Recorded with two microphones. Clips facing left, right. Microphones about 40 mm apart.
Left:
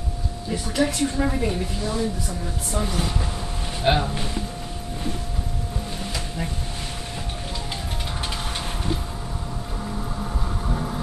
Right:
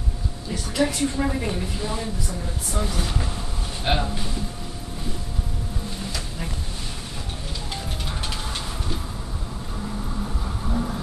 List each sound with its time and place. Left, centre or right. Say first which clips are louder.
0.7 s a woman's voice: even; centre
2.8 s speech: left 1 dB; centre
10.7 s vehicle: right 3 dB; centre